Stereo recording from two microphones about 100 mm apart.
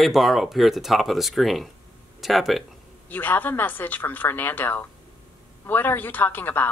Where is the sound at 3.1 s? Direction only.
20° left (ahead or behind).